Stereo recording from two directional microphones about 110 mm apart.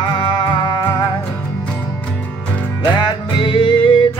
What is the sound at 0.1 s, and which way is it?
Music, 45° left (ahead or behind).